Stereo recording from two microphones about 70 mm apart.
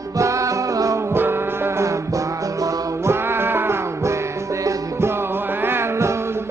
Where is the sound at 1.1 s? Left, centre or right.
Right.